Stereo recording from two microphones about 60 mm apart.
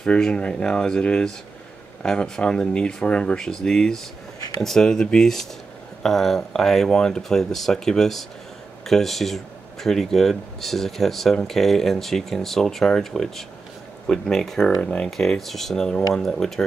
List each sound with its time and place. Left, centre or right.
0.0 s speech: centre
14.7 s speech: centre
15.0 s speech: centre